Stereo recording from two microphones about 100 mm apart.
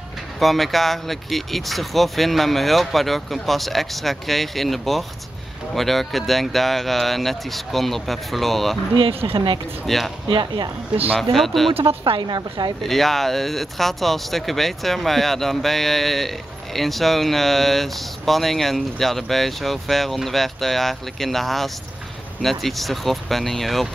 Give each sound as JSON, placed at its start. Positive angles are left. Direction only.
{"t": 0.4, "sound": "speech", "side_deg": 0}
{"t": 8.9, "sound": "speech", "side_deg": -65}
{"t": 9.8, "sound": "speech", "side_deg": 0}
{"t": 10.3, "sound": "a woman's voice", "side_deg": -50}
{"t": 11.3, "sound": "speech", "side_deg": 0}
{"t": 11.7, "sound": "speech", "side_deg": -70}
{"t": 12.2, "sound": "a woman's voice", "side_deg": -45}
{"t": 12.8, "sound": "speech", "side_deg": 0}